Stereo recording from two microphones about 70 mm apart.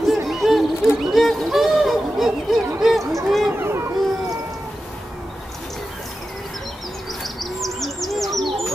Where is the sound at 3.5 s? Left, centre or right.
Right.